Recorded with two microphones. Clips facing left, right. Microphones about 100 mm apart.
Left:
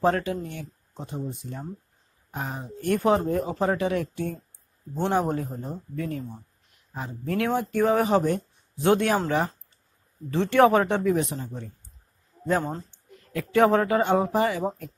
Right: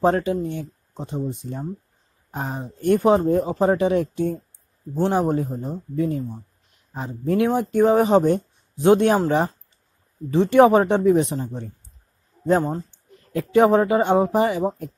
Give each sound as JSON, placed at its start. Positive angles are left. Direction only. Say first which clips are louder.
{"t": 0.0, "sound": "speech", "louder": "right 4 dB", "side_deg": -25}
{"t": 4.9, "sound": "a man's voice", "louder": "right 4 dB", "side_deg": -5}
{"t": 5.3, "sound": "speech", "louder": "right 6 dB", "side_deg": -15}
{"t": 10.3, "sound": "speech", "louder": "right 5 dB", "side_deg": -15}
{"t": 13.5, "sound": "speech", "louder": "right 4 dB", "side_deg": -15}